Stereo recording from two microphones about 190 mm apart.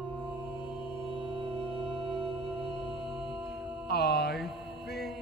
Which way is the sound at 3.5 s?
5° right (ahead or behind).